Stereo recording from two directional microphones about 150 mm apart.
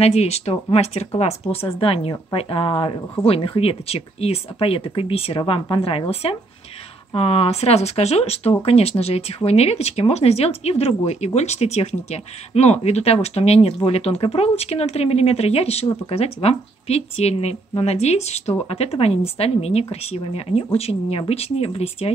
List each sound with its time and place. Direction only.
0.0 s speech: 45° left (ahead or behind)